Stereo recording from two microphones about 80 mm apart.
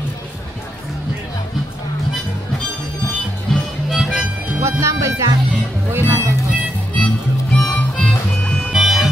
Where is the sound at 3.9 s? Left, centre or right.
Centre.